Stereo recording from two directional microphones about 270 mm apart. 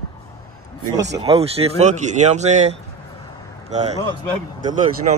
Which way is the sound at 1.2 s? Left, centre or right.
Right.